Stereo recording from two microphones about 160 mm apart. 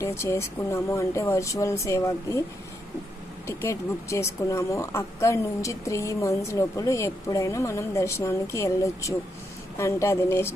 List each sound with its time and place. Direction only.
0.0 s speech: 15° left (ahead or behind)
3.4 s speech: 15° left (ahead or behind)